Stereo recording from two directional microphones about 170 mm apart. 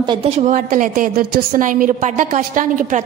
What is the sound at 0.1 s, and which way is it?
Speech, 35° right (ahead or behind).